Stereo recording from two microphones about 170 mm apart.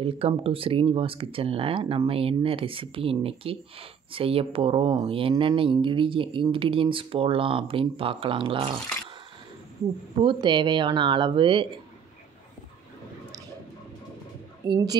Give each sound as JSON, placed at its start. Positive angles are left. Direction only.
{"t": 0.0, "sound": "speech", "side_deg": -35}
{"t": 10.2, "sound": "speech", "side_deg": -25}
{"t": 14.7, "sound": "speech", "side_deg": -20}